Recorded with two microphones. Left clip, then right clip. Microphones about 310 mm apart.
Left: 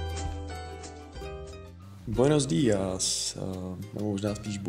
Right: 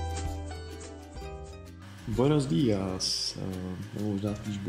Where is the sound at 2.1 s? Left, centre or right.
Left.